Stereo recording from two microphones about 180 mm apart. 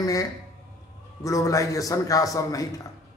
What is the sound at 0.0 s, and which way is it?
Speech, 20° left (ahead or behind).